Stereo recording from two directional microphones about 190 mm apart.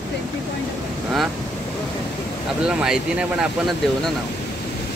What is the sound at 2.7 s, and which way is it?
Speech, 5° right (ahead or behind).